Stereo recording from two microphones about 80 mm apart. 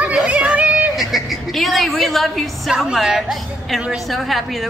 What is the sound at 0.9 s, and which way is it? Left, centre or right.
A woman's voice, centre.